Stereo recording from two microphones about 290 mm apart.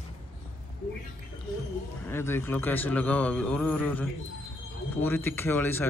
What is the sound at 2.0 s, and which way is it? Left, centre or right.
A man's voice, centre.